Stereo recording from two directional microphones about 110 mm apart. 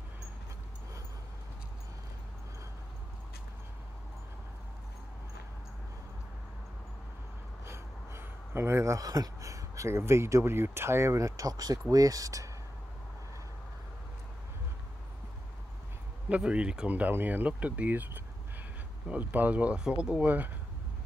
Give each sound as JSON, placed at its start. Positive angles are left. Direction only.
{"t": 7.6, "sound": "speech", "side_deg": -25}
{"t": 16.3, "sound": "speech", "side_deg": -10}